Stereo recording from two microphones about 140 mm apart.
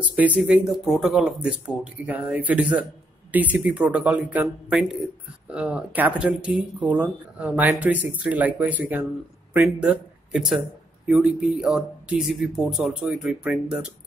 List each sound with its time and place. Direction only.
0.1 s speech: 10° right (ahead or behind)
10.3 s speech: centre (ahead or behind)